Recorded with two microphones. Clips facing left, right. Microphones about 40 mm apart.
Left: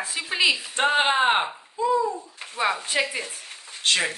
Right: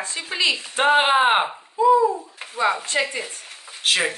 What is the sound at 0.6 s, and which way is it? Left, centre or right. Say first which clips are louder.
A child's voice: right 4 dB; centre.